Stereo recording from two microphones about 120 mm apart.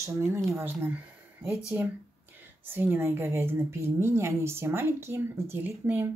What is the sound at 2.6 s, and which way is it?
Speech, 20° right (ahead or behind).